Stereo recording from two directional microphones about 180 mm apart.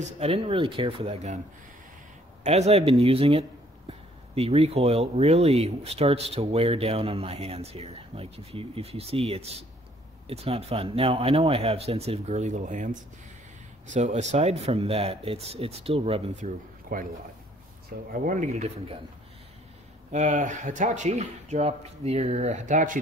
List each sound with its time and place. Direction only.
0.2 s speech: 30° right (ahead or behind)
2.4 s speech: 35° right (ahead or behind)
20.1 s speech: 40° right (ahead or behind)